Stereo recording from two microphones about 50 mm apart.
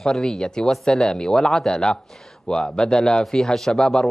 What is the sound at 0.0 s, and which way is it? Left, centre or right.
Speech, centre.